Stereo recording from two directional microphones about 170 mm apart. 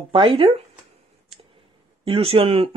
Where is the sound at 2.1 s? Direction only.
35° right (ahead or behind).